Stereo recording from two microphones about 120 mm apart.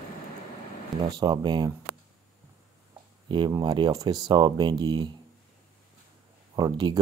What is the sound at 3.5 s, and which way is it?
Speech, 35° right (ahead or behind).